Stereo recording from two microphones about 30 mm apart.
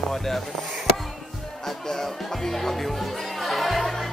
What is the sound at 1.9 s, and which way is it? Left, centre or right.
Speech, centre.